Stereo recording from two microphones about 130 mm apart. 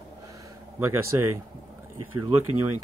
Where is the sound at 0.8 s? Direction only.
20° right (ahead or behind).